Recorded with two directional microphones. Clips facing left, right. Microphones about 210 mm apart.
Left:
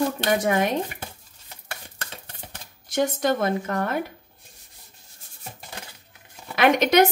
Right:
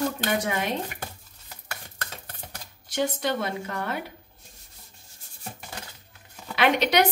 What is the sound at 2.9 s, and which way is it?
Speech, 45° left (ahead or behind).